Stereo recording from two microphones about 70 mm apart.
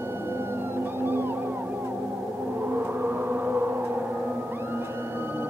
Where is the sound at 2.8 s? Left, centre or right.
Right.